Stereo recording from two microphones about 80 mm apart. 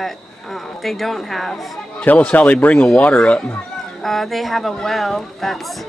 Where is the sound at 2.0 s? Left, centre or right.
Centre.